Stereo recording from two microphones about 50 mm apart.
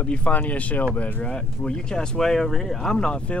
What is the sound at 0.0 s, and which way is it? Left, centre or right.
Speech, left.